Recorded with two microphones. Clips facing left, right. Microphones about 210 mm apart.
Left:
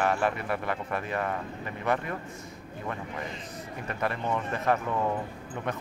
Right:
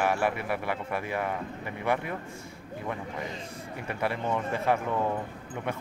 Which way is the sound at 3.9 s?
10° right (ahead or behind).